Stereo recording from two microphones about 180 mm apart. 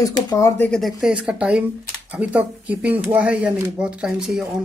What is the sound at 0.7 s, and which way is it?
Speech, centre (ahead or behind).